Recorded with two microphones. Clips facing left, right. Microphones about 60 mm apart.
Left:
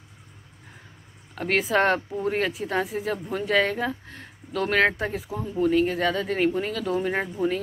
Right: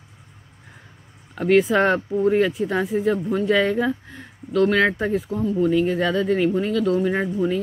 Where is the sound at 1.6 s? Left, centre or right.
Centre.